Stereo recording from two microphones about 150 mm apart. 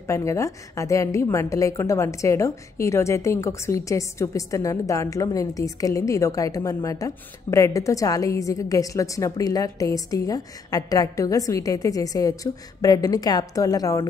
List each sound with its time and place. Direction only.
0.0 s a woman's voice: 20° left (ahead or behind)